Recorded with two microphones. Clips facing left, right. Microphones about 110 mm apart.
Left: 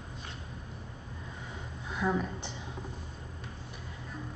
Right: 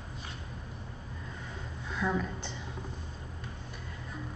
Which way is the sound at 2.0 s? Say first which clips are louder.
Left 1 dB; 15° left (ahead or behind).